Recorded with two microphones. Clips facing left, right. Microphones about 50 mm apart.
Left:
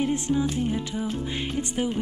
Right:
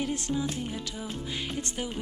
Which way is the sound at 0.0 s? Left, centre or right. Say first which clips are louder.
Left 6 dB; left.